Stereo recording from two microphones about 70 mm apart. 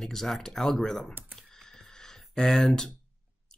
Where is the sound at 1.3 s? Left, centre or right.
Centre.